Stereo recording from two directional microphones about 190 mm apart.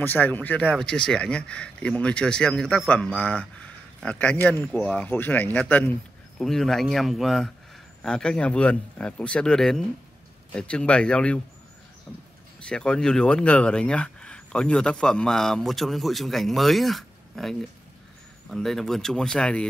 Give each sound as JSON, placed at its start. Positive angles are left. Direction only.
{"t": 0.0, "sound": "speech", "side_deg": 10}